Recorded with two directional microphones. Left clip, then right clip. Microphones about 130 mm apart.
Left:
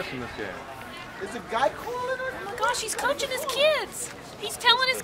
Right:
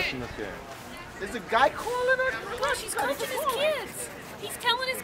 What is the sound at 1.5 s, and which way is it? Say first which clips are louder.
Speech: right 3 dB; 15° right (ahead or behind).